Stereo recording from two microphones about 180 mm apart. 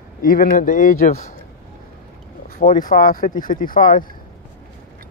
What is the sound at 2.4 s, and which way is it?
Speech, 50° left (ahead or behind).